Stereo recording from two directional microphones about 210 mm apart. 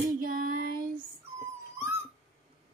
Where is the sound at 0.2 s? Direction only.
40° right (ahead or behind).